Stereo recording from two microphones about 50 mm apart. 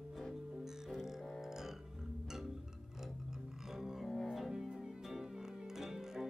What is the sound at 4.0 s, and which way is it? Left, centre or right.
Double bass, centre.